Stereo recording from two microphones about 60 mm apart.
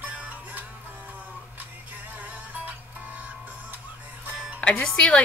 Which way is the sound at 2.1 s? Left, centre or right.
Right.